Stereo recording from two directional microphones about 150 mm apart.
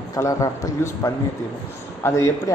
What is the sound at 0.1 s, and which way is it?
A man's voice, 20° left (ahead or behind).